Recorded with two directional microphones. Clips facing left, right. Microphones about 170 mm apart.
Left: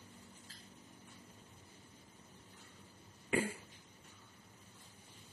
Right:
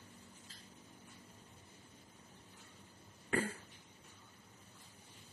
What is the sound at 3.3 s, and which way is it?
Cough, 10° left (ahead or behind).